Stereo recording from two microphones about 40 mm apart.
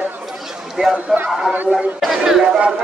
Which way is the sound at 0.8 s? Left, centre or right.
Centre.